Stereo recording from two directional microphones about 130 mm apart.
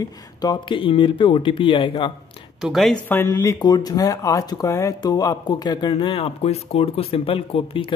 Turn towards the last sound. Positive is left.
turn(degrees=45)  # may be behind; listen again after turning